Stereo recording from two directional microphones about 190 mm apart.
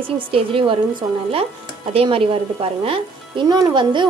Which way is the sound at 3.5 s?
20° right (ahead or behind).